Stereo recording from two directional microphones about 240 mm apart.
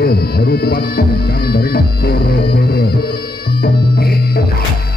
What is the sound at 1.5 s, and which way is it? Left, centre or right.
Music, left.